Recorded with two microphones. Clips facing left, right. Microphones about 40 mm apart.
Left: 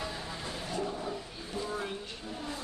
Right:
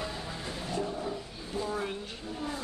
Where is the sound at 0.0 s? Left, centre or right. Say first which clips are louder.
Right 1 dB; centre.